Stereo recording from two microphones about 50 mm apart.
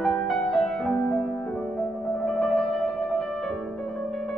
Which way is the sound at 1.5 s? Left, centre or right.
Centre.